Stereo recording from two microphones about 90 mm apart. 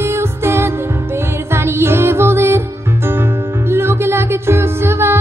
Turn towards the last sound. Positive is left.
turn(degrees=-30)  # may be behind; listen again after turning